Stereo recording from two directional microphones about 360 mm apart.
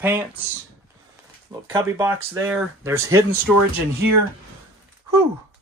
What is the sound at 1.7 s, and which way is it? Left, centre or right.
Speech, centre.